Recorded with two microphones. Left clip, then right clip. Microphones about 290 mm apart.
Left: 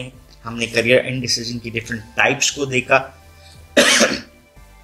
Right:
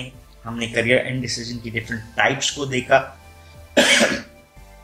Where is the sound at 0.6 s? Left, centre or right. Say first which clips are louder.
Left 3 dB; left.